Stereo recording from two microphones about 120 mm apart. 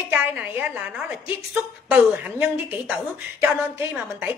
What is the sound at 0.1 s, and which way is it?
A woman's voice, 15° right (ahead or behind).